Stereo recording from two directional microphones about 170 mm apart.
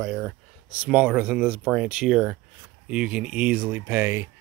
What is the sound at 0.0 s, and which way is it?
Speech, centre (ahead or behind).